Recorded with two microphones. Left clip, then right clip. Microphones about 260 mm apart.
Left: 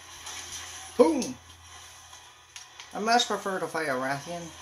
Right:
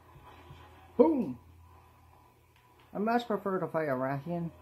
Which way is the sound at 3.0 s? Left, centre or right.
Centre.